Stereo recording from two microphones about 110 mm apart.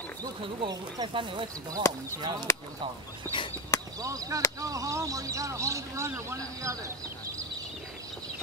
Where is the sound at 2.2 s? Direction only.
40° right (ahead or behind).